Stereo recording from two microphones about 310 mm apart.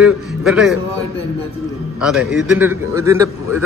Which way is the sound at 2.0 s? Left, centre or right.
Centre.